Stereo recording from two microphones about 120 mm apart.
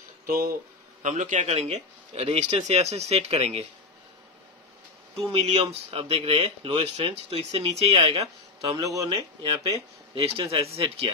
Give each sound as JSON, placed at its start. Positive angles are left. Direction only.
{"t": 1.0, "sound": "speech", "side_deg": -90}
{"t": 5.3, "sound": "speech", "side_deg": -50}
{"t": 8.5, "sound": "a man's voice", "side_deg": -25}
{"t": 9.4, "sound": "speech", "side_deg": -40}
{"t": 10.1, "sound": "speech", "side_deg": -55}